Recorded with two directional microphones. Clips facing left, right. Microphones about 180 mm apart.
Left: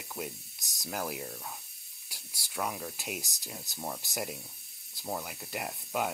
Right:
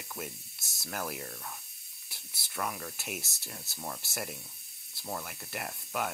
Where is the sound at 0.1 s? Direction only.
15° left (ahead or behind).